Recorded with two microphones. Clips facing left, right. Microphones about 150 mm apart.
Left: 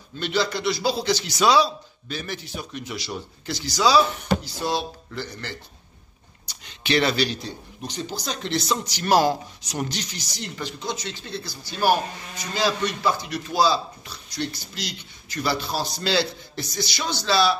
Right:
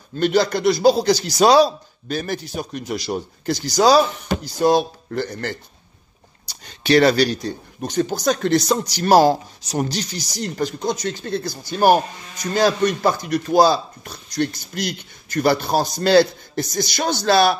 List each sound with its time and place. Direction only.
0.2 s a man's voice: 45° right (ahead or behind)
6.4 s a man's voice: 40° right (ahead or behind)